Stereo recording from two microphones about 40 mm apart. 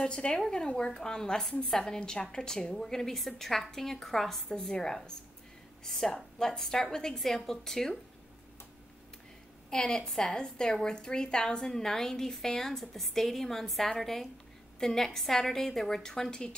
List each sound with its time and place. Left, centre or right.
0.0 s a woman's voice: left
9.7 s a woman's voice: centre